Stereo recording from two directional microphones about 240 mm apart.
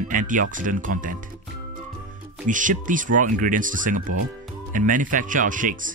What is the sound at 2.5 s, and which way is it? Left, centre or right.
Speech, right.